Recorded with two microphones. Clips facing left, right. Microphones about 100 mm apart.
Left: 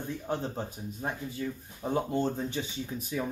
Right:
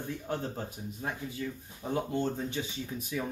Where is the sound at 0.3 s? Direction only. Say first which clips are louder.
Left 3 dB; 25° left (ahead or behind).